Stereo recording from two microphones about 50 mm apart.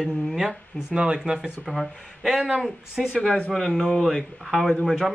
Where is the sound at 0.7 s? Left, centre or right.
Centre.